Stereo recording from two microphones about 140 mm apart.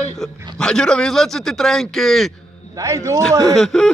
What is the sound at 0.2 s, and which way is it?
A man's voice, 5° left (ahead or behind).